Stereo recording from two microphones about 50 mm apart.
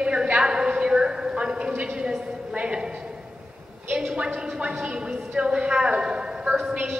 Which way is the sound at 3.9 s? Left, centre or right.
Right.